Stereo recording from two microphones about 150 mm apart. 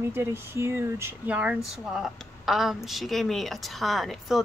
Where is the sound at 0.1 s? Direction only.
15° right (ahead or behind).